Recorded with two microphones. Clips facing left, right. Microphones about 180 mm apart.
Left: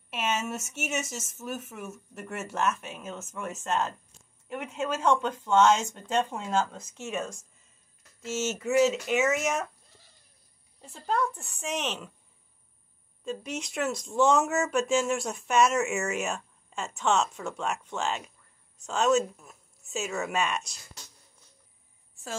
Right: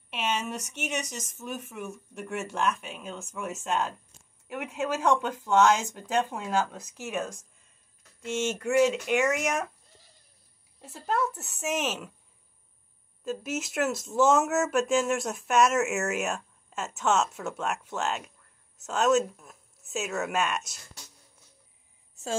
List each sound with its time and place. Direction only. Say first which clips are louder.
0.1 s speech: even; 5° left (ahead or behind)
10.8 s speech: even; 5° right (ahead or behind)
13.2 s speech: right 2 dB; 5° right (ahead or behind)